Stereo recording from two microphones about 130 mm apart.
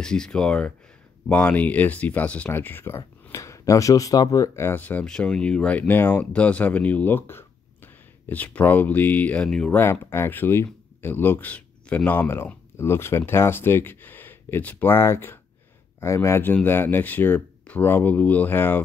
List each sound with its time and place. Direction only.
0.0 s speech: 5° left (ahead or behind)
10.1 s speech: 20° left (ahead or behind)